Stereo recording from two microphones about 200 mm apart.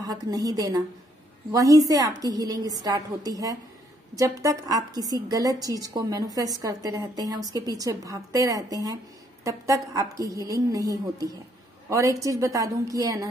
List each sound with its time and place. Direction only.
0.0 s a woman's voice: 20° right (ahead or behind)